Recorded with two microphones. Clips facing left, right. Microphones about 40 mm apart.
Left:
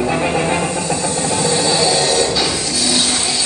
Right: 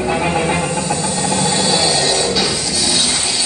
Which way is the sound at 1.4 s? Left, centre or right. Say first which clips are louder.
Left 2 dB; right.